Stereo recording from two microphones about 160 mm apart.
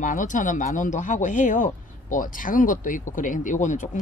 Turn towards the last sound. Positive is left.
turn(degrees=50)  # may be behind; listen again after turning